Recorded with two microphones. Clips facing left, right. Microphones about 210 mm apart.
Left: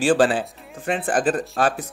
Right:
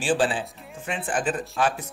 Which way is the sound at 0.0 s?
40° left (ahead or behind).